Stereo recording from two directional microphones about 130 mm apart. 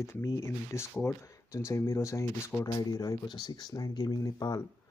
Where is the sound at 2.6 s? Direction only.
30° left (ahead or behind).